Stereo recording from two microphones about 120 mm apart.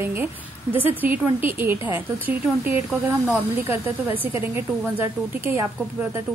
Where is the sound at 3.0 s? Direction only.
15° right (ahead or behind).